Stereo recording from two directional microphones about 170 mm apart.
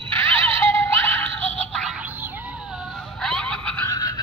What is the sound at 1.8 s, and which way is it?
Music, 5° right (ahead or behind).